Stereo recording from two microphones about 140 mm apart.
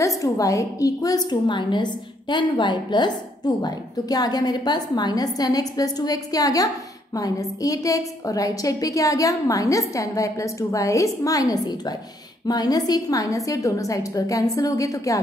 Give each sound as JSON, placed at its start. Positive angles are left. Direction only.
{"t": 0.0, "sound": "a woman's voice", "side_deg": 25}